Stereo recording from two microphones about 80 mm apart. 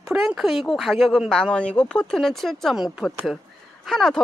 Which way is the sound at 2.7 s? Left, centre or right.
Centre.